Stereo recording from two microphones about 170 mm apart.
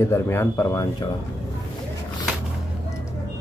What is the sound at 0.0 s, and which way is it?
Speech, 15° left (ahead or behind).